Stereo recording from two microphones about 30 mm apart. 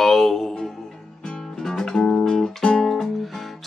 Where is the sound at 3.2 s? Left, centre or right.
Centre.